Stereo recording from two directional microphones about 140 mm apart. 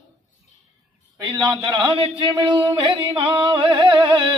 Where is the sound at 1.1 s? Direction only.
35° right (ahead or behind).